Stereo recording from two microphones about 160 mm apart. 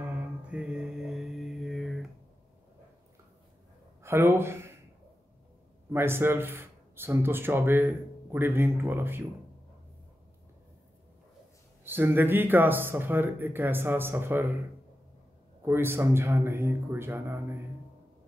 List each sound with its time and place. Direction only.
0.5 s music: 5° right (ahead or behind)
4.0 s speech: 15° right (ahead or behind)
5.9 s speech: 15° right (ahead or behind)
11.8 s speech: 15° right (ahead or behind)
15.6 s speech: 15° right (ahead or behind)